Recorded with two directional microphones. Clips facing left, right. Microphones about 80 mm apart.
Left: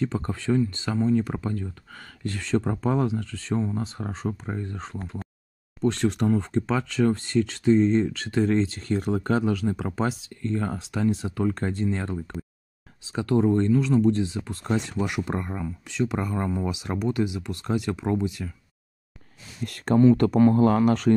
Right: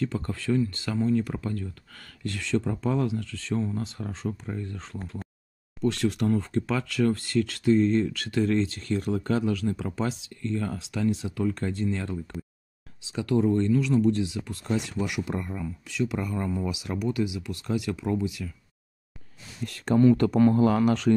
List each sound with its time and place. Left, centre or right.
0.0 s speech: left
19.6 s speech: left